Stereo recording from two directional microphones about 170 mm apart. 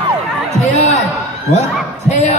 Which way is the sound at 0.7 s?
40° left (ahead or behind).